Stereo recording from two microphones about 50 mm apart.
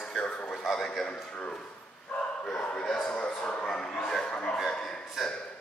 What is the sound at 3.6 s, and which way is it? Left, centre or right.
Bow-wow, centre.